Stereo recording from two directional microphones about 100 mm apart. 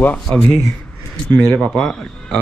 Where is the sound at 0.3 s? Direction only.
Centre (ahead or behind).